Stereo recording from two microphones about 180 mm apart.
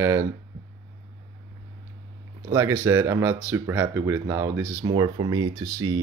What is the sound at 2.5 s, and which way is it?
Speech, 15° right (ahead or behind).